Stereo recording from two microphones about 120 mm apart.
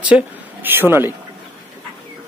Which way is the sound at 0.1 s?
15° right (ahead or behind).